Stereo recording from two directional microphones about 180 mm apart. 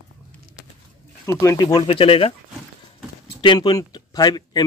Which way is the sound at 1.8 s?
30° left (ahead or behind).